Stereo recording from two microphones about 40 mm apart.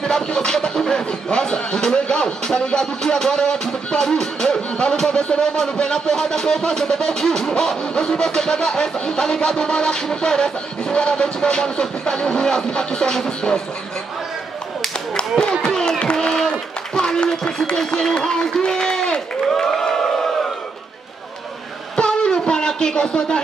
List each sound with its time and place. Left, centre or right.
0.0 s speech: left
4.6 s music: left
4.9 s speech: centre
8.9 s music: left
15.5 s a sound: centre
16.0 s run: left
21.9 s music: left